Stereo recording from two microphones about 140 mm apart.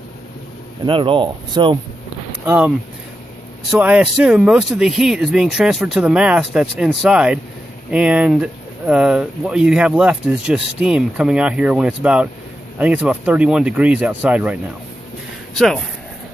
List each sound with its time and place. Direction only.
0.8 s speech: 40° right (ahead or behind)
3.8 s speech: 10° right (ahead or behind)
15.5 s speech: 5° left (ahead or behind)